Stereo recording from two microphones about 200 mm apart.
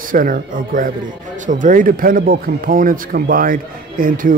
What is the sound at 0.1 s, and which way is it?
Speech, 45° right (ahead or behind).